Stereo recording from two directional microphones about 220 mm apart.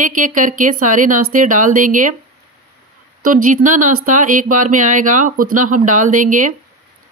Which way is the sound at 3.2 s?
35° right (ahead or behind).